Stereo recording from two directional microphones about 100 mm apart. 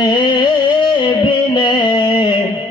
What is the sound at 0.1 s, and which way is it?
Music, 50° left (ahead or behind).